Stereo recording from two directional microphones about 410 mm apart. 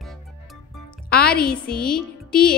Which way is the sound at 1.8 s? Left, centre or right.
Centre.